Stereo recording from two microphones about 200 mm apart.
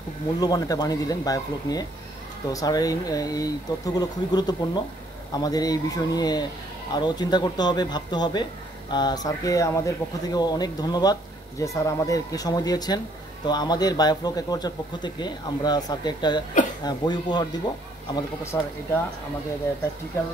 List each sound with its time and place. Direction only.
0.4 s speech: 20° left (ahead or behind)